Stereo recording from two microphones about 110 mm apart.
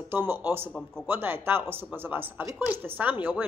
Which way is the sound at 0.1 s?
20° right (ahead or behind).